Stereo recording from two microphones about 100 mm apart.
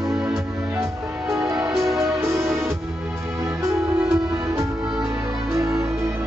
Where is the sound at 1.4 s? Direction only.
5° right (ahead or behind).